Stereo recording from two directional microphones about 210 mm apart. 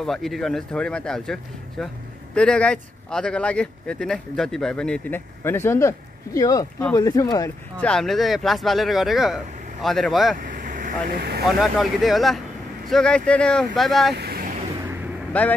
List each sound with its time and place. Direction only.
0.0 s speech: centre (ahead or behind); by 7.5 s 15° left (ahead or behind)
7.7 s speech: 5° left (ahead or behind)
10.3 s vehicle: 40° right (ahead or behind)
11.4 s speech: centre (ahead or behind)
14.1 s vehicle: 50° right (ahead or behind)
15.3 s speech: 5° left (ahead or behind)